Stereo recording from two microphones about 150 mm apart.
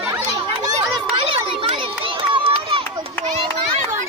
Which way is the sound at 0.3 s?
25° right (ahead or behind).